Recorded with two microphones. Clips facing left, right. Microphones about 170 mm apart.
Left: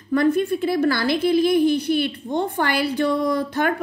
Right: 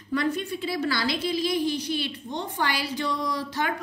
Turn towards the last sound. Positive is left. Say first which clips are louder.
# left 8 dB
turn(degrees=55)  # may be behind; listen again after turning